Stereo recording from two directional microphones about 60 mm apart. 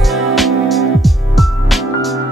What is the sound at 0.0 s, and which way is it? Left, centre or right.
Music, centre.